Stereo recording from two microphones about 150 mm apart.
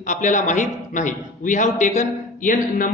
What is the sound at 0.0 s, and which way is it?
A man's voice, 55° left (ahead or behind).